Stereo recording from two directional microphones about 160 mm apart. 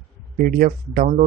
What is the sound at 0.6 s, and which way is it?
Speech, 55° right (ahead or behind).